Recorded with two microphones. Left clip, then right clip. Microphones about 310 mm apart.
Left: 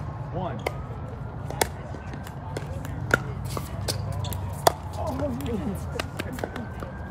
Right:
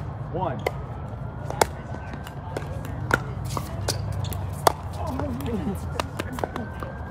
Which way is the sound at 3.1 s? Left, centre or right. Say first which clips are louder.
Even; centre.